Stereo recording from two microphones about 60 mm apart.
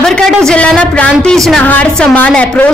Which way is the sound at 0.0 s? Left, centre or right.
Centre.